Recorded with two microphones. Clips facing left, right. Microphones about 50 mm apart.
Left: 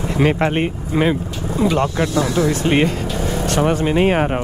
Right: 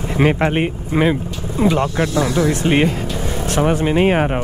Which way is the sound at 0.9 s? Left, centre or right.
Right.